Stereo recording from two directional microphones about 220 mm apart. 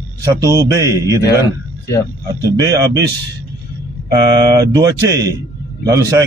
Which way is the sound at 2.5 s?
15° right (ahead or behind).